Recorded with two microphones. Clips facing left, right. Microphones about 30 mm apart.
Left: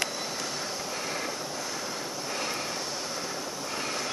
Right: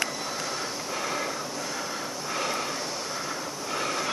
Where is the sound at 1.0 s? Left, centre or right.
Centre.